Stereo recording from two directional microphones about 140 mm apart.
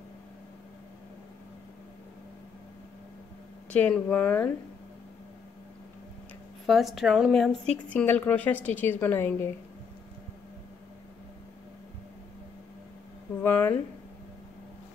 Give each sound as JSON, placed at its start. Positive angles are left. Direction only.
{"t": 3.7, "sound": "a woman's voice", "side_deg": 10}
{"t": 6.6, "sound": "a woman's voice", "side_deg": 0}
{"t": 7.7, "sound": "a woman's voice", "side_deg": 10}
{"t": 13.4, "sound": "speech", "side_deg": 15}